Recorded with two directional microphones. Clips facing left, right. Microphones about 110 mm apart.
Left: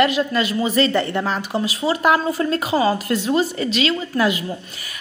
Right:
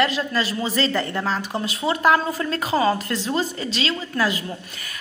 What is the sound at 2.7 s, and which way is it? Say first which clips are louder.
Speech: even; 5° left (ahead or behind).